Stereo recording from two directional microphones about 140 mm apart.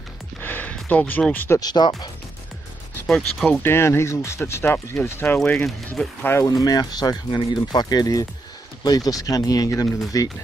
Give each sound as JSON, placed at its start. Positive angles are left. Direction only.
{"t": 0.4, "sound": "a sound", "side_deg": 10}
{"t": 1.6, "sound": "speech", "side_deg": 30}
{"t": 3.1, "sound": "speech", "side_deg": 5}
{"t": 3.6, "sound": "speech", "side_deg": 15}